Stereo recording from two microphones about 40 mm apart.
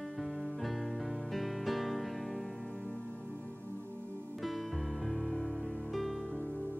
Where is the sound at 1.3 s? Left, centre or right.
Centre.